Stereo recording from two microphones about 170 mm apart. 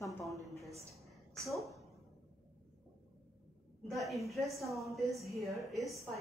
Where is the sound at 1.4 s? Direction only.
Centre (ahead or behind).